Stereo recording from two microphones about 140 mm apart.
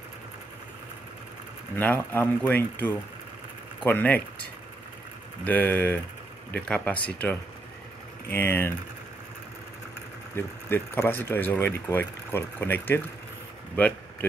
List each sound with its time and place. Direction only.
1.8 s speech: 15° left (ahead or behind)
10.3 s speech: 15° left (ahead or behind)